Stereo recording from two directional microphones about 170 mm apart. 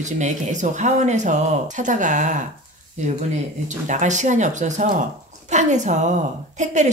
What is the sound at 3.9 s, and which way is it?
Speech, 45° right (ahead or behind).